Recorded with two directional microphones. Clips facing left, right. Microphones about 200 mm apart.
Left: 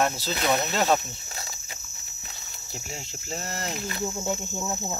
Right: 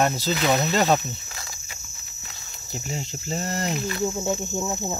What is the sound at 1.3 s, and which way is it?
Cricket, 30° left (ahead or behind).